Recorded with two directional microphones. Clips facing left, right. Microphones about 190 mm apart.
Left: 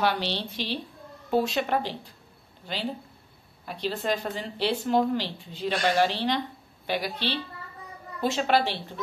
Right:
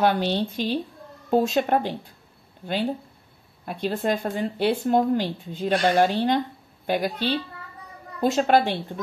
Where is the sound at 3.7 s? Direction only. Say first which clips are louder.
Right 4 dB; 50° right (ahead or behind).